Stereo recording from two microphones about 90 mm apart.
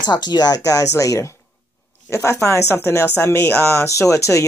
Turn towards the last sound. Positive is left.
turn(degrees=35)  # may be behind; listen again after turning